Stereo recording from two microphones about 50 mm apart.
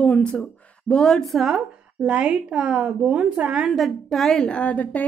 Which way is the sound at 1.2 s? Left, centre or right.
Centre.